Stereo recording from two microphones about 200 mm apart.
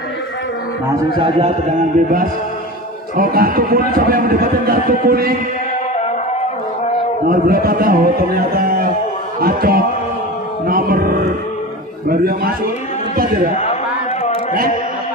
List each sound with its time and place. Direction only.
1.1 s a man's voice: 25° right (ahead or behind)
2.0 s a man's voice: 45° right (ahead or behind)
7.2 s a man's voice: 45° right (ahead or behind)
10.7 s mantra: 45° right (ahead or behind)
12.1 s a man's voice: 45° right (ahead or behind)